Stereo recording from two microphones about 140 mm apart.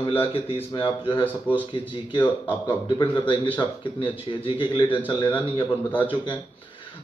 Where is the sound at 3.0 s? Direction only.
35° left (ahead or behind).